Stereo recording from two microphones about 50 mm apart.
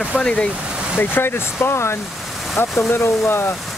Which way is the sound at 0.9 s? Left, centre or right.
Left.